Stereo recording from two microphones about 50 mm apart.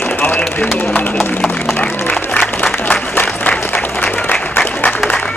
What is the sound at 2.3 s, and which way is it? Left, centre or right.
Applause, left.